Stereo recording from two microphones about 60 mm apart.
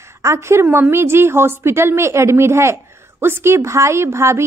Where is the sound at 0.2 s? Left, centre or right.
Right.